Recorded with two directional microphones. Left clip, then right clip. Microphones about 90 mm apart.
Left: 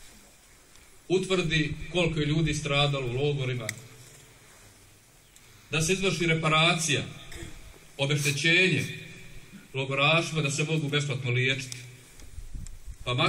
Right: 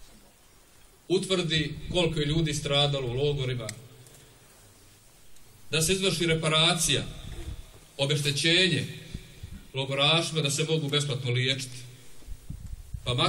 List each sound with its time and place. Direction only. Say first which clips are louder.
1.0 s a man's voice: even; 30° right (ahead or behind)
5.7 s a man's voice: right 1 dB; 35° right (ahead or behind)
7.9 s a sound: right 1 dB; 35° right (ahead or behind)
8.2 s a man's voice: left 1 dB; 25° right (ahead or behind)